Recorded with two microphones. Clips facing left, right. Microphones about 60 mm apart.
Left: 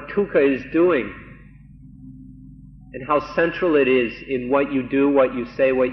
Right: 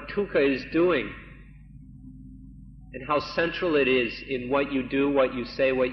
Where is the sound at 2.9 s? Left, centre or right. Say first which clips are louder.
Left 6 dB; centre.